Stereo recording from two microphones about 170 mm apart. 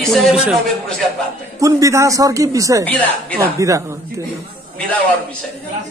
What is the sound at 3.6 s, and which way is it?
Speech, 15° right (ahead or behind).